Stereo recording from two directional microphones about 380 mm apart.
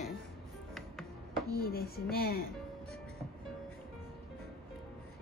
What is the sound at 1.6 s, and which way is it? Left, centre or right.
Speech, left.